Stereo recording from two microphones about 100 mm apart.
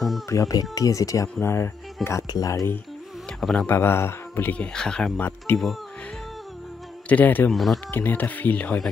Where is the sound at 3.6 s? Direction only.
25° left (ahead or behind).